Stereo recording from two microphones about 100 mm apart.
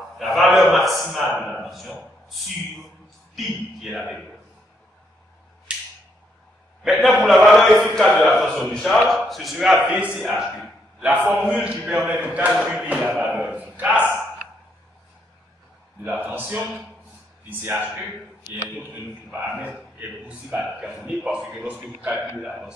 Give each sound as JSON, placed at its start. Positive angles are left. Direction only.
{"t": 0.2, "sound": "a sound", "side_deg": 0}
{"t": 0.7, "sound": "a man's voice", "side_deg": 0}
{"t": 1.9, "sound": "a sound", "side_deg": 5}
{"t": 6.8, "sound": "a man's voice", "side_deg": 0}
{"t": 11.0, "sound": "a man's voice", "side_deg": -15}
{"t": 16.3, "sound": "a man's voice", "side_deg": -15}
{"t": 20.6, "sound": "a man's voice", "side_deg": -5}